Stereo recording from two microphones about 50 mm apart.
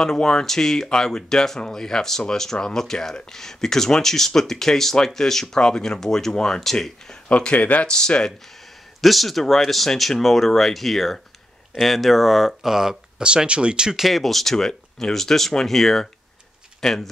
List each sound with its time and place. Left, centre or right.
0.0 s speech: centre
7.2 s speech: left
7.9 s speech: centre
8.5 s speech: centre
13.2 s speech: centre
14.0 s speech: centre